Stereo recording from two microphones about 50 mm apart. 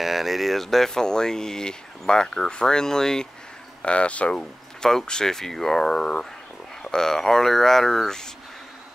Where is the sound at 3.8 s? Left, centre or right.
Left.